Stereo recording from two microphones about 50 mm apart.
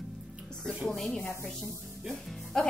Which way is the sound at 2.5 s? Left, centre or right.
Centre.